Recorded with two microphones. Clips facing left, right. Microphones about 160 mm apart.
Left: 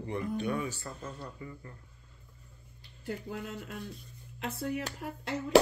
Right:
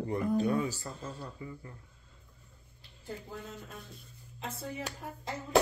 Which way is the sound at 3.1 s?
80° left.